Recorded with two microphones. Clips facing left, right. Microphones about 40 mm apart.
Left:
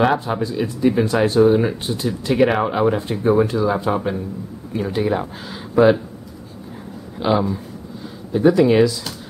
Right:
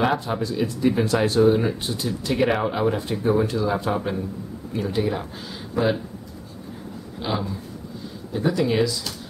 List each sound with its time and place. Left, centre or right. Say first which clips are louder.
0.0 s speech: left 4 dB; centre
7.2 s speech: left 9 dB; centre